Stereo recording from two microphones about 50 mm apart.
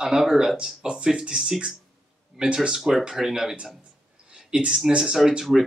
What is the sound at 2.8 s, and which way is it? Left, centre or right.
Speech, centre.